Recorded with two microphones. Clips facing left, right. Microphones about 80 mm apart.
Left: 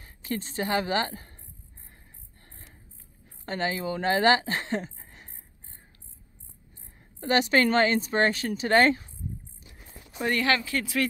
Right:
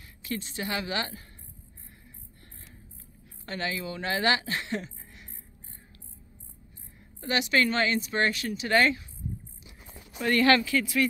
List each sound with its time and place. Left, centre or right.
0.0 s speech: left
3.4 s speech: left
7.2 s a woman's voice: left
10.3 s speech: centre
10.8 s speech: left